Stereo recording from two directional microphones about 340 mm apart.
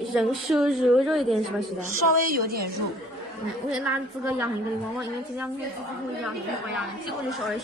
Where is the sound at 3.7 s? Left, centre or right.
Centre.